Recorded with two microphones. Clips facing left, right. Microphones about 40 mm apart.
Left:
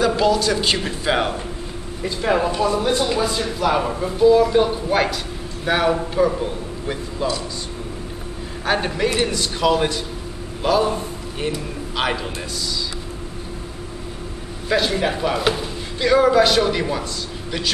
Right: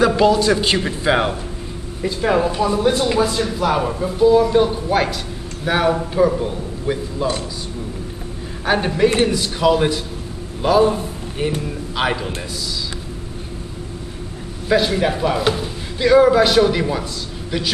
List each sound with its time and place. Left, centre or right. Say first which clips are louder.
0.0 s a man's voice: right 4 dB; centre
0.3 s a man's voice: right 3 dB; right; by 7.2 s centre
8.6 s a man's voice: right 4 dB; centre
14.7 s a man's voice: right 3 dB; centre